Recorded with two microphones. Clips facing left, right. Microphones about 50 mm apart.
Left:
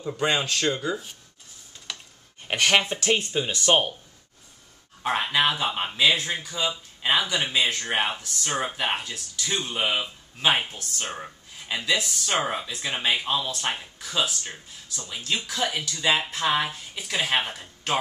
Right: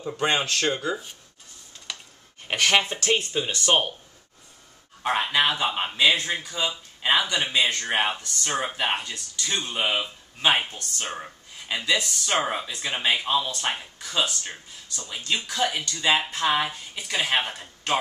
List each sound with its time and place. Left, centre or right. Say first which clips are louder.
0.2 s speech: right 1 dB; right
0.7 s speech: even; centre
1.9 s a sound: even; centre
2.5 s speech: even; centre
3.3 s a man's voice: left 1 dB; centre
5.0 s a man's voice: even; centre